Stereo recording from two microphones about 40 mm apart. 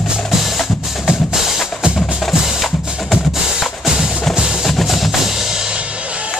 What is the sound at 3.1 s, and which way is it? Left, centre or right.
Music, centre.